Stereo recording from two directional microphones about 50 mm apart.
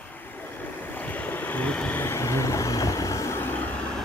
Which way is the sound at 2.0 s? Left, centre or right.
Left.